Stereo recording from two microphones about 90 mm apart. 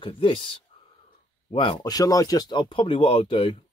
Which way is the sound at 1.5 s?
80° left.